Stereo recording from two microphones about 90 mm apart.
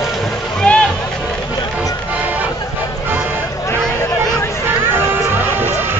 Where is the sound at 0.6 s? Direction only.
15° left (ahead or behind).